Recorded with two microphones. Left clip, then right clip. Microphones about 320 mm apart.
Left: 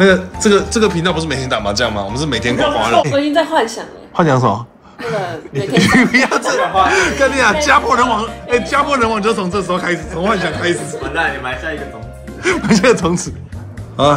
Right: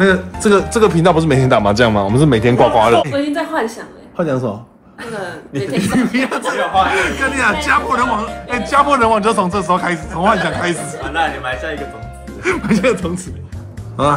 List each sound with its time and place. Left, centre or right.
0.0 s speech: centre
0.5 s speech: centre
3.1 s a woman's voice: left
5.8 s a man's voice: left; by 10.8 s centre
12.4 s speech: centre